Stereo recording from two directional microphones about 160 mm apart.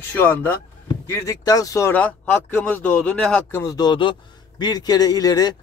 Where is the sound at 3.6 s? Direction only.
25° left (ahead or behind).